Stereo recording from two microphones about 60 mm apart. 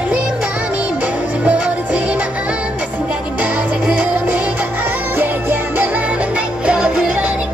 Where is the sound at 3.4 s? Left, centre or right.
Right.